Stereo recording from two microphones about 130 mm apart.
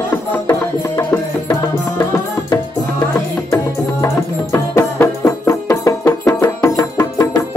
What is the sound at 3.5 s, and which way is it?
Music, 20° left (ahead or behind).